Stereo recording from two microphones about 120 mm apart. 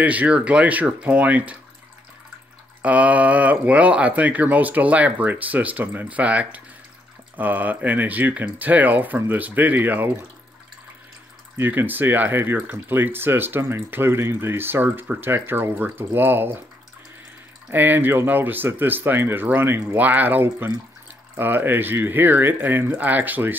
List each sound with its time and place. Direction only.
0.0 s speech: 10° right (ahead or behind)
2.8 s speech: 10° right (ahead or behind)
11.5 s speech: 15° right (ahead or behind)
17.6 s speech: 15° right (ahead or behind)